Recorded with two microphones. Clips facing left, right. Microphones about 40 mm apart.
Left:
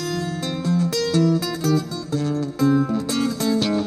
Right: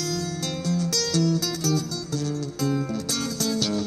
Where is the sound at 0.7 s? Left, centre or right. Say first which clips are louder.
Left 5 dB; left.